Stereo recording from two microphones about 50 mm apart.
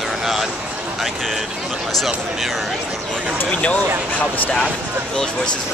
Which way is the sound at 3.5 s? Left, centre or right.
Left.